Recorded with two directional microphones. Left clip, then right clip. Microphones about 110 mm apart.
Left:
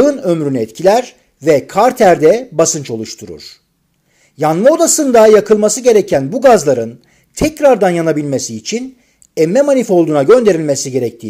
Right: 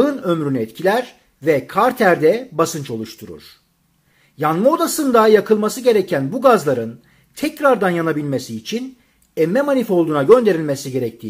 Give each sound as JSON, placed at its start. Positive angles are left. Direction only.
{"t": 0.0, "sound": "speech", "side_deg": 25}